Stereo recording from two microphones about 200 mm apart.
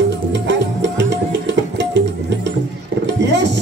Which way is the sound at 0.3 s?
60° right (ahead or behind).